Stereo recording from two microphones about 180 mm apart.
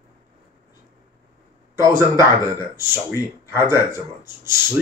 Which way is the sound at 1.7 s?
15° right (ahead or behind).